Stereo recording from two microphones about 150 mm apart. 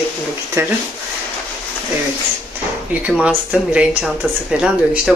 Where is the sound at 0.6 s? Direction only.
15° right (ahead or behind).